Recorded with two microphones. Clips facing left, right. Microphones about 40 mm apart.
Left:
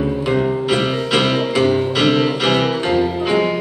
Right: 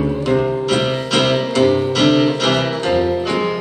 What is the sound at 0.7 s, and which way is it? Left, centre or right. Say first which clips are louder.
Music: even; centre.